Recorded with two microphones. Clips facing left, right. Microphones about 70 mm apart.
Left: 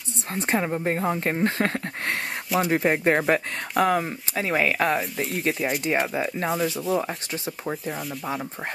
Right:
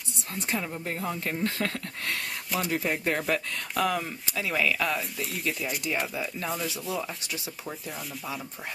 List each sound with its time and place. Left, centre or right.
0.3 s speech: left
2.7 s speech: left
3.8 s speech: left
4.8 s speech: left
6.5 s speech: centre